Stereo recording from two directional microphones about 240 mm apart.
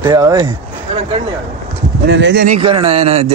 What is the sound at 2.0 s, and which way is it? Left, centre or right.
Speech, right.